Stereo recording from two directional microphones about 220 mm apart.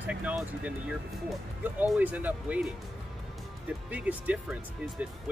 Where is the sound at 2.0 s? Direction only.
5° right (ahead or behind).